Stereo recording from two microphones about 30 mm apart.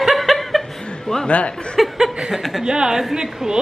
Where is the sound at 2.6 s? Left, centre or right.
Right.